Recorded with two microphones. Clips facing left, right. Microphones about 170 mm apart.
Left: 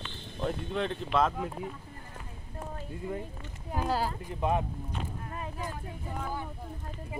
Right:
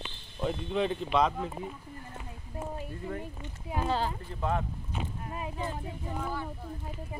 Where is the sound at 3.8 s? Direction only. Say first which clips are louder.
Even; 10° left (ahead or behind).